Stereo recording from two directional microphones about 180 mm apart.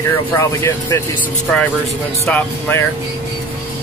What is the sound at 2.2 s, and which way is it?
Speech, 10° left (ahead or behind).